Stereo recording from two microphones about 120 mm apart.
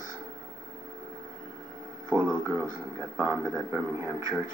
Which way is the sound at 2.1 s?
20° right (ahead or behind).